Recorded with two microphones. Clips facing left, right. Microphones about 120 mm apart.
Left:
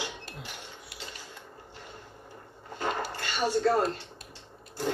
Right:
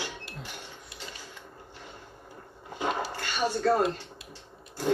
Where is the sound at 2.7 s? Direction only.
15° right (ahead or behind).